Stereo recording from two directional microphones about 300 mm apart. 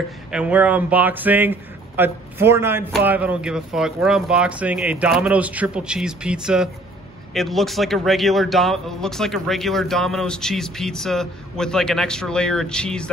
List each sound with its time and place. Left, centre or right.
0.3 s speech: centre